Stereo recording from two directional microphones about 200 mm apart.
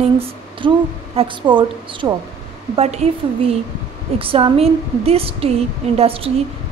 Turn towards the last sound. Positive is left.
turn(degrees=-30)  # may be behind; listen again after turning